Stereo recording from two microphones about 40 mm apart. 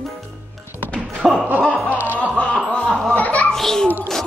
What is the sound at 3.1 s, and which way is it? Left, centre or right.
Children playing, left.